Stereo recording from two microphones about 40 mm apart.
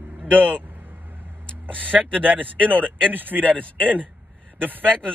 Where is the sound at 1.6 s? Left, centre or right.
Right.